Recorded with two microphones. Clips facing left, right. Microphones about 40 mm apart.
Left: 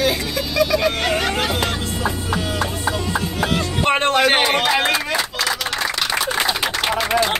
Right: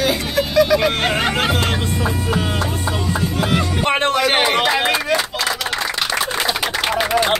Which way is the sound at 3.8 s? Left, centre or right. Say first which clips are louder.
Left 1 dB; centre.